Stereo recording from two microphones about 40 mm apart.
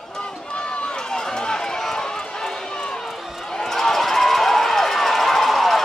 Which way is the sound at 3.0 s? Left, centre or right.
Centre.